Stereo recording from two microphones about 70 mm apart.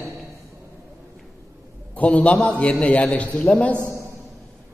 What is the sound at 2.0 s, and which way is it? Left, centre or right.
A man's voice, centre.